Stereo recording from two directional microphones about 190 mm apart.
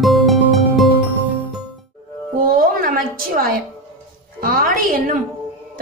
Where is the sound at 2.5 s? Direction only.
45° right (ahead or behind).